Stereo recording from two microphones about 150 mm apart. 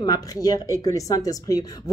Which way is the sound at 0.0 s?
25° left (ahead or behind).